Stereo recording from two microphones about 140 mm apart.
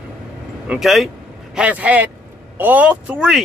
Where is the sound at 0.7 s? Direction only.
Centre (ahead or behind).